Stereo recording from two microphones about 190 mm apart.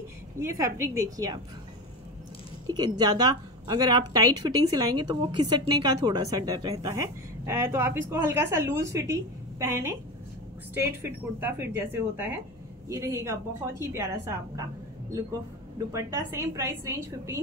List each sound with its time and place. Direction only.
0.4 s speech: 15° right (ahead or behind)
2.6 s a woman's voice: 20° right (ahead or behind)
15.9 s speech: 15° right (ahead or behind)